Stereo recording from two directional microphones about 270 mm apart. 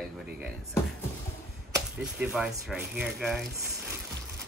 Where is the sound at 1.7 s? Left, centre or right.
Centre.